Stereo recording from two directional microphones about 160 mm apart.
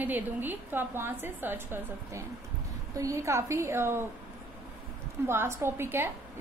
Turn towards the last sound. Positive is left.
turn(degrees=-15)  # may be behind; listen again after turning